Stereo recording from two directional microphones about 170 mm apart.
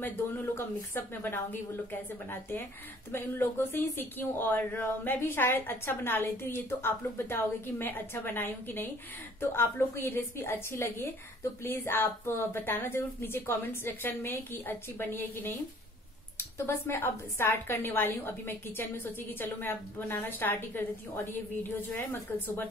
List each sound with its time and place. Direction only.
0.0 s speech: 10° left (ahead or behind)